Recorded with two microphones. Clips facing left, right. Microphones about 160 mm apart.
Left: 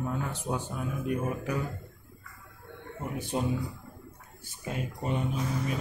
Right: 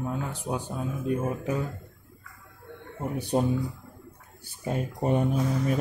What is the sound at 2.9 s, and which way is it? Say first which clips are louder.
Speech: right 6 dB; 35° right (ahead or behind).